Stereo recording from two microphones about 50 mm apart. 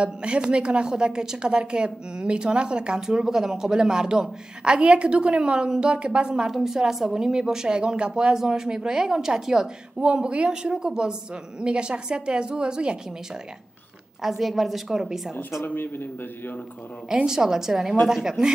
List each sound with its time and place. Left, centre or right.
0.0 s a woman's voice: right
14.2 s a woman's voice: centre
15.6 s a man's voice: left
17.1 s a woman's voice: centre